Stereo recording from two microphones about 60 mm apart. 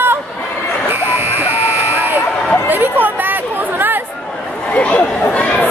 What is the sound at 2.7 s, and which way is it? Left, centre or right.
Chatter, right.